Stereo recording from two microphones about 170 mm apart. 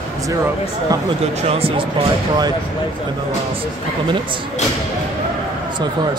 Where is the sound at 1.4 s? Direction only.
35° right (ahead or behind).